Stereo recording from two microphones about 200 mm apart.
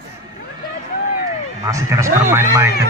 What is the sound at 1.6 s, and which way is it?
A man's voice, 15° right (ahead or behind).